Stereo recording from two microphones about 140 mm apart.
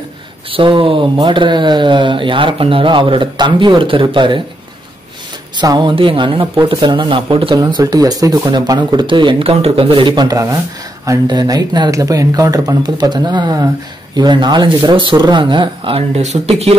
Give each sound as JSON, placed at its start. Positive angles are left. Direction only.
{"t": 0.5, "sound": "speech", "side_deg": -35}
{"t": 5.6, "sound": "speech", "side_deg": -30}
{"t": 16.2, "sound": "speech", "side_deg": -50}